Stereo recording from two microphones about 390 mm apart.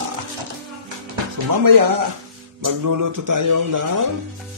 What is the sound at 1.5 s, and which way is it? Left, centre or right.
Speech, right.